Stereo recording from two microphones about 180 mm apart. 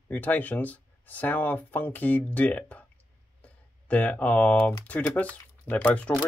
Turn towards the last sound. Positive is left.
turn(degrees=10)  # may be behind; listen again after turning